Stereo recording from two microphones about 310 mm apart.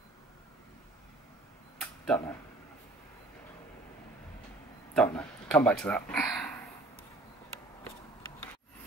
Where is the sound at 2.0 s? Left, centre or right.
Centre.